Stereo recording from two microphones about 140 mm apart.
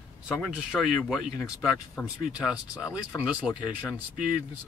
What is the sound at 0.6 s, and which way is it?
Speech, 5° right (ahead or behind).